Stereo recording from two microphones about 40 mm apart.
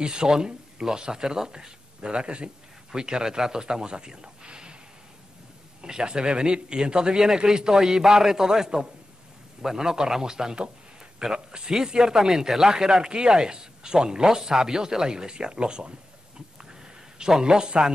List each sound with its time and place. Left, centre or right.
0.0 s a man's voice: centre
5.8 s a man's voice: centre